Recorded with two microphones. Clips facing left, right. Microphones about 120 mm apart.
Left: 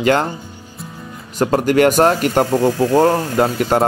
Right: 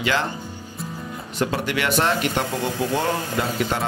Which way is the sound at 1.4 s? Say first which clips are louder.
Left 10 dB; 45° left (ahead or behind).